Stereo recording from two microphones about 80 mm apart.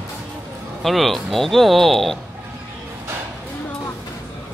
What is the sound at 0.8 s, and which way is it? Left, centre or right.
Speech, centre.